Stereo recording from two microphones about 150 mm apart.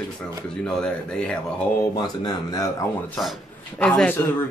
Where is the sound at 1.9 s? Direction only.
25° left (ahead or behind).